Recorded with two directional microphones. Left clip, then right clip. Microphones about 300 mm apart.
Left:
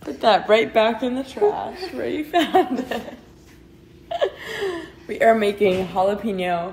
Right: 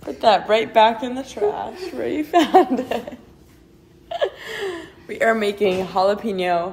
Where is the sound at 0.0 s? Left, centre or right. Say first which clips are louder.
Right 1 dB; centre.